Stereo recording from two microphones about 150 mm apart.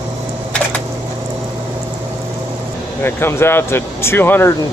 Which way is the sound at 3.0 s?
15° left (ahead or behind).